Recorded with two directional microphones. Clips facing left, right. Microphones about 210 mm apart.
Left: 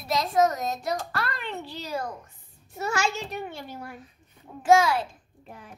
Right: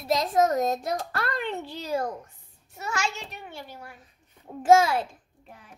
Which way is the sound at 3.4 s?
50° left (ahead or behind).